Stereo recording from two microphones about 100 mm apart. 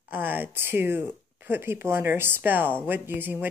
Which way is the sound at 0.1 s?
20° right (ahead or behind).